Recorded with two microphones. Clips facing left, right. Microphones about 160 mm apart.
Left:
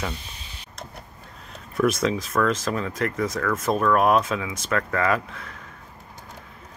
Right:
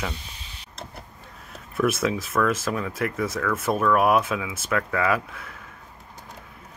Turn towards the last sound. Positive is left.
turn(degrees=-5)  # may be behind; listen again after turning